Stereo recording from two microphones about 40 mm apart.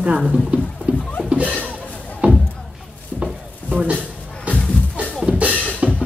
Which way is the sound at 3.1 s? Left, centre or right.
Centre.